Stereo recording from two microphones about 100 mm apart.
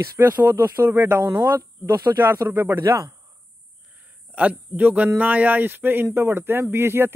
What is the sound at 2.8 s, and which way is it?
Speech, 45° right (ahead or behind).